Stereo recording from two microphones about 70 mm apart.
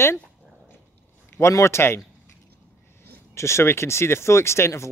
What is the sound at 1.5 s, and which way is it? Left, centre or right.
Speech, left.